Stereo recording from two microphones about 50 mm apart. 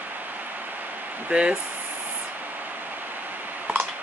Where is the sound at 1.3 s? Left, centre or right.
Right.